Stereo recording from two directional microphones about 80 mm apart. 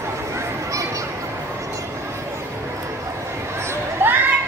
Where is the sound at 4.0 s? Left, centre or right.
Right.